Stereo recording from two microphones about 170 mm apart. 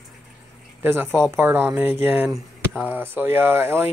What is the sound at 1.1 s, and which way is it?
Speech, 5° left (ahead or behind).